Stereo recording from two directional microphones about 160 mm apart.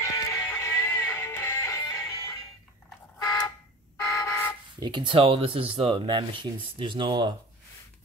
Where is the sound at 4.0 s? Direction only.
20° left (ahead or behind).